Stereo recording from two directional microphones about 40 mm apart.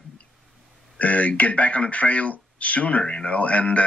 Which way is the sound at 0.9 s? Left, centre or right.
Left.